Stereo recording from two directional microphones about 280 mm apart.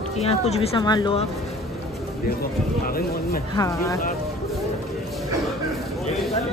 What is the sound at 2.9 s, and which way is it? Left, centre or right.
Speech, left.